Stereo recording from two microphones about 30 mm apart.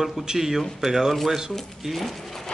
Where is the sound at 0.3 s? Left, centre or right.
Centre.